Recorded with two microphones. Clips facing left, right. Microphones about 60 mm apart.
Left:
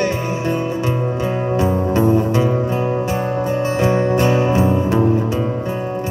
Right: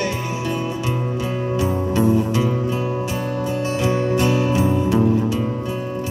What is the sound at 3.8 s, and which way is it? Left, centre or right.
Music, left.